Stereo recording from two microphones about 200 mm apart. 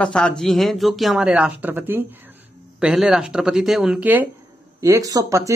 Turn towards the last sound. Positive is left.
turn(degrees=-15)  # may be behind; listen again after turning